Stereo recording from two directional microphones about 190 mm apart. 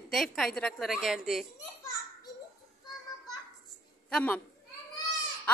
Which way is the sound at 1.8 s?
15° left (ahead or behind).